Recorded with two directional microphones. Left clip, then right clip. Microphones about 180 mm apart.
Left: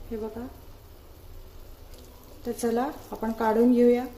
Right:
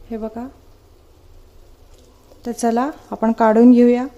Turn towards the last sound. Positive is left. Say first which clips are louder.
# right 8 dB
turn(degrees=-50)  # may be behind; listen again after turning